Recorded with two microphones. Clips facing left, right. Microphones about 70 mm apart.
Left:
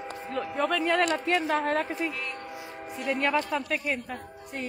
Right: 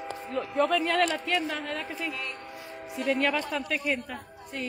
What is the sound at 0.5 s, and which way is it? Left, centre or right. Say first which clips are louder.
Speech: right 1 dB; centre.